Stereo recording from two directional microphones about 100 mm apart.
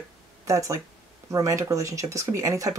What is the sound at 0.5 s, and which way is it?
Speech, 35° right (ahead or behind).